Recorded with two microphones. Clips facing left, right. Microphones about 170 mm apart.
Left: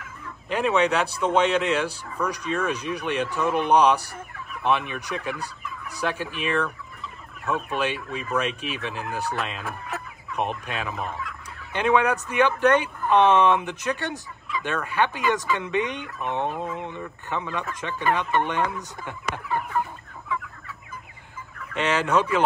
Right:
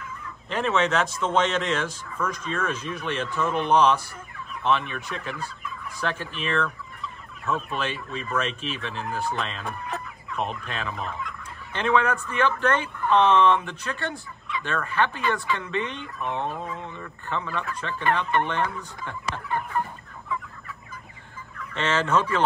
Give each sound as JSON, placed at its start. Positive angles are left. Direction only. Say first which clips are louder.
{"t": 0.5, "sound": "speech", "louder": "left 2 dB", "side_deg": 10}
{"t": 10.3, "sound": "speech", "louder": "left 2 dB", "side_deg": 15}
{"t": 11.2, "sound": "fowl", "louder": "even", "side_deg": 10}
{"t": 12.3, "sound": "speech", "louder": "left 7 dB", "side_deg": 15}
{"t": 21.7, "sound": "speech", "louder": "left 1 dB", "side_deg": 15}